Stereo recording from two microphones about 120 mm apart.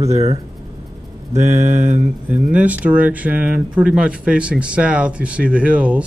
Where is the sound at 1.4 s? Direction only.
20° right (ahead or behind).